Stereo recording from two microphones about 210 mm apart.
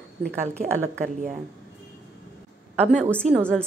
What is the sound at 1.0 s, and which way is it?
Speech, 40° right (ahead or behind).